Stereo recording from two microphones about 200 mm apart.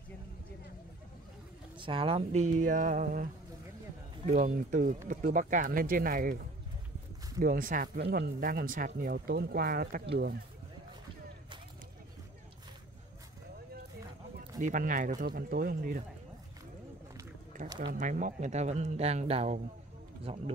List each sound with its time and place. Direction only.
1.8 s a woman's voice: 25° right (ahead or behind)
2.6 s speech: 40° right (ahead or behind)
4.3 s speech: 40° right (ahead or behind); by 10.3 s 55° right (ahead or behind)
14.6 s speech: 40° right (ahead or behind)
17.9 s speech: 40° right (ahead or behind)